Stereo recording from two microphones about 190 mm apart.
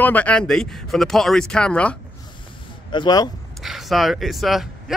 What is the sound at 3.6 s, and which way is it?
Speech, centre (ahead or behind).